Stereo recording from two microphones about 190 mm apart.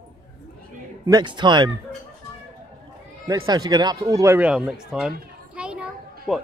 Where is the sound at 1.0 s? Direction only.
20° right (ahead or behind).